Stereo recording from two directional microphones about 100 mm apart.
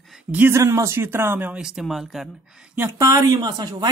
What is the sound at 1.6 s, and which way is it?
Speech, 5° right (ahead or behind).